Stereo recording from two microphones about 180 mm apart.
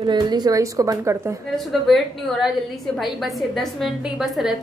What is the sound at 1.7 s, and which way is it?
A woman's voice, centre (ahead or behind).